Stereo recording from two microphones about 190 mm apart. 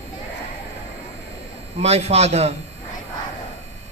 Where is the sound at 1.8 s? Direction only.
35° right (ahead or behind).